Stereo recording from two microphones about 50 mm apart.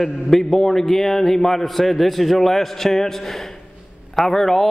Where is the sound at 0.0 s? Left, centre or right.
Centre.